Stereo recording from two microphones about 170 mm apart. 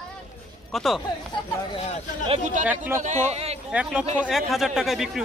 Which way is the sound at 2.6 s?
10° right (ahead or behind).